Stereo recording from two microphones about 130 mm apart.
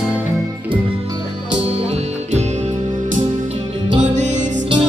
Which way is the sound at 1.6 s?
50° right (ahead or behind).